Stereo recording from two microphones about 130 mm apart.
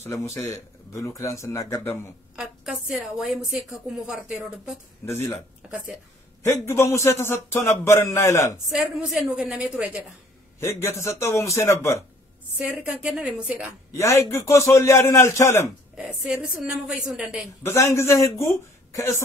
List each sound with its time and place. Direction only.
0.0 s a man's voice: 20° left (ahead or behind)
2.3 s a woman's voice: 5° right (ahead or behind)
5.0 s speech: 15° left (ahead or behind)
6.4 s a man's voice: 20° left (ahead or behind)
8.6 s a woman's voice: centre (ahead or behind)
10.6 s a man's voice: 20° left (ahead or behind)
12.5 s a woman's voice: 5° right (ahead or behind)
13.9 s a man's voice: 25° left (ahead or behind)
16.0 s a woman's voice: 5° right (ahead or behind)
17.7 s a man's voice: 20° left (ahead or behind)